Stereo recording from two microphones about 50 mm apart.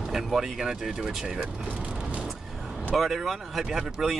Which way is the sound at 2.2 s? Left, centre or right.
Centre.